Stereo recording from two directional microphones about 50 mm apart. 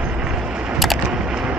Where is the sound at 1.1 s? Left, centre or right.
Centre.